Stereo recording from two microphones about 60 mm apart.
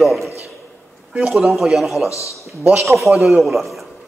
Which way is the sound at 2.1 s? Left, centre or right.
Left.